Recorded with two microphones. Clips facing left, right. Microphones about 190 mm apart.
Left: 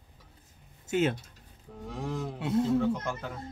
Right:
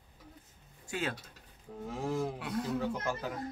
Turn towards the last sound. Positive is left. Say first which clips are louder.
# left 4 dB
turn(degrees=-5)  # may be behind; listen again after turning